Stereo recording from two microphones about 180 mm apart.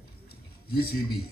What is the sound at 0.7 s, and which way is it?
Speech, 60° left (ahead or behind).